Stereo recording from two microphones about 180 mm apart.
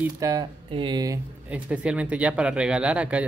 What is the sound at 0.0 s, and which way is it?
Speech, 20° right (ahead or behind).